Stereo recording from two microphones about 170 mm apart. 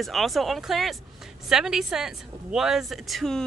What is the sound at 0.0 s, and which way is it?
Speech, centre (ahead or behind).